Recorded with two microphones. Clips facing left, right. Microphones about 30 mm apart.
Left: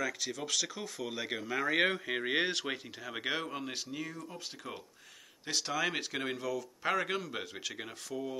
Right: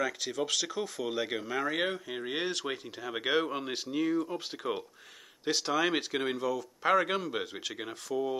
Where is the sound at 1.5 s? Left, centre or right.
Centre.